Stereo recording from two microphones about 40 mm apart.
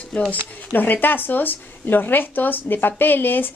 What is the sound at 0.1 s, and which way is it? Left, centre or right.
Speech, left.